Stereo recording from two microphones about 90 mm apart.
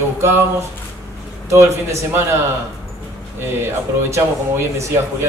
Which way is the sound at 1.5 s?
30° right (ahead or behind).